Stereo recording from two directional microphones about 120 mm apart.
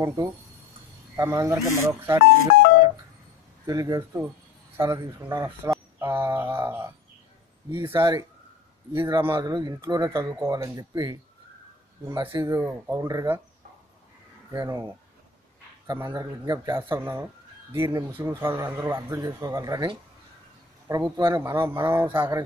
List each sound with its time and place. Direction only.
0.0 s speech: 25° right (ahead or behind)
3.6 s speech: 30° right (ahead or behind)
8.9 s speech: 40° right (ahead or behind)
14.5 s speech: 25° right (ahead or behind)
15.9 s speech: 25° right (ahead or behind)
21.0 s speech: 20° right (ahead or behind)